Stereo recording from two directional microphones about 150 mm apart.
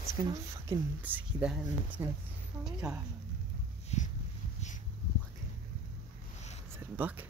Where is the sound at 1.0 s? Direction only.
10° right (ahead or behind).